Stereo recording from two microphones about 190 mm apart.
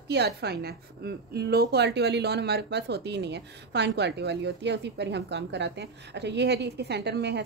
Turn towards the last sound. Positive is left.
turn(degrees=-60)  # may be behind; listen again after turning